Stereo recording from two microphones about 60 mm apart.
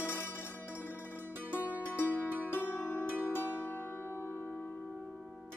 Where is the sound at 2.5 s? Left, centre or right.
Left.